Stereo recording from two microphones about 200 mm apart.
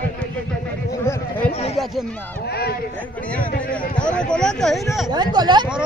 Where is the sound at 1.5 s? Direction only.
30° left (ahead or behind).